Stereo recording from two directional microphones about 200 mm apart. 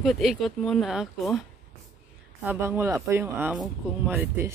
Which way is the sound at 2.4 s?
10° right (ahead or behind).